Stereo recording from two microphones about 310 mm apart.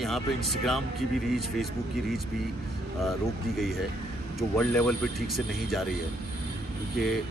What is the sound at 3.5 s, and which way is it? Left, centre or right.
Speech, centre.